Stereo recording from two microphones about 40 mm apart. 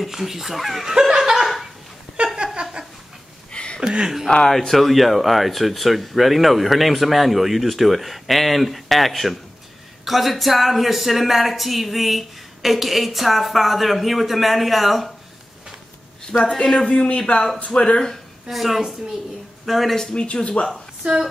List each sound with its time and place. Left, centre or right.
0.0 s speech: centre
0.9 s laughter: centre
1.4 s a sound: centre
2.3 s a sound: right
3.5 s a sound: left
4.5 s speech: centre
16.4 s speech: centre
16.8 s speech: left
18.5 s speech: centre
20.0 s speech: centre
20.2 s speech: left
21.0 s speech: right